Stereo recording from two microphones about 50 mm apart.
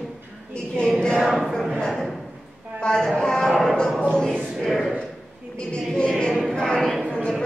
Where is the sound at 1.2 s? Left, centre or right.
Centre.